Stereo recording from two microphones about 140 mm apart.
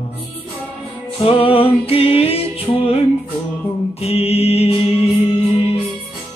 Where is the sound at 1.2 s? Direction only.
40° left (ahead or behind).